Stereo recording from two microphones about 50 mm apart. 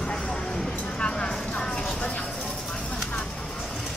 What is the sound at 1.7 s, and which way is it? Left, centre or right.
Vehicle, centre.